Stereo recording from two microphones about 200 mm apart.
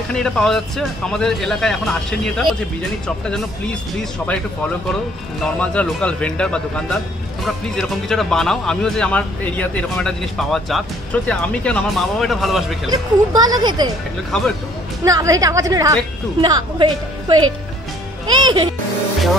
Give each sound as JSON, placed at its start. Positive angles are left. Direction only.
{"t": 0.1, "sound": "speech", "side_deg": 5}
{"t": 5.4, "sound": "speech", "side_deg": 5}
{"t": 12.9, "sound": "a woman's voice", "side_deg": -20}
{"t": 15.0, "sound": "a woman's voice", "side_deg": -15}